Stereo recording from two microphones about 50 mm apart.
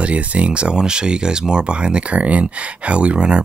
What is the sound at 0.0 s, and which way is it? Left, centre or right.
Speech, right.